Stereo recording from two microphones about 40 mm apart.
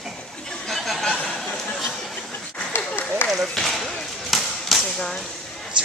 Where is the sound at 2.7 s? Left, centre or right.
Left.